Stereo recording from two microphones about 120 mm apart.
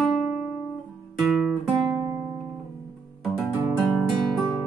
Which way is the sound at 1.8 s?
35° right (ahead or behind).